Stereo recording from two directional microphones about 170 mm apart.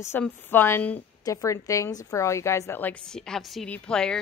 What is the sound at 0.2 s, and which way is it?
A woman's voice, 10° left (ahead or behind).